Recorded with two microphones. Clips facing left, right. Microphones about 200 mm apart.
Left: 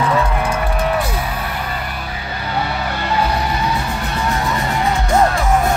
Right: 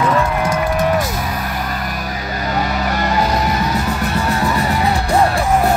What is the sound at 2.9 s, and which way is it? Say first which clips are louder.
Music: right 3 dB; 40° right (ahead or behind).